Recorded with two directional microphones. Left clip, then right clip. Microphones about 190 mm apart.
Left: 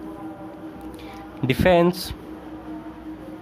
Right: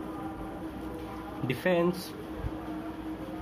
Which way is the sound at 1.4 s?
60° left (ahead or behind).